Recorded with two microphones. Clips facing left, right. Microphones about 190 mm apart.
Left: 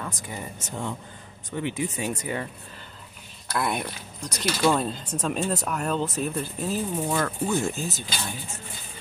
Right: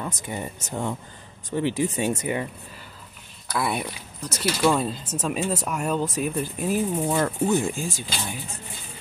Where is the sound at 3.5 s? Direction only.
5° right (ahead or behind).